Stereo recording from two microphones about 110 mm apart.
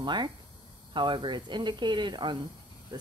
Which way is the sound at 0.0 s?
45° right (ahead or behind).